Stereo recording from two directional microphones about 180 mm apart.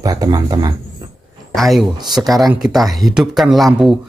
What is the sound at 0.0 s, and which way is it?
Speech, 20° right (ahead or behind).